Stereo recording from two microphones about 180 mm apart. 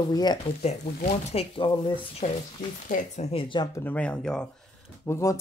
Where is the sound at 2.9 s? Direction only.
50° left (ahead or behind).